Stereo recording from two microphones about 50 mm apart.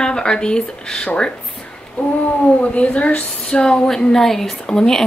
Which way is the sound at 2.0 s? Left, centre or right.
Left.